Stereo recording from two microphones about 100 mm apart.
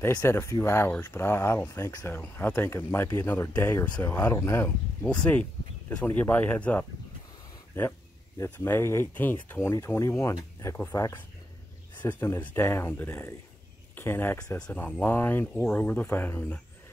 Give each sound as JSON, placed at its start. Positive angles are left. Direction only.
{"t": 0.0, "sound": "speech", "side_deg": 25}
{"t": 5.0, "sound": "speech", "side_deg": 10}
{"t": 12.0, "sound": "speech", "side_deg": 20}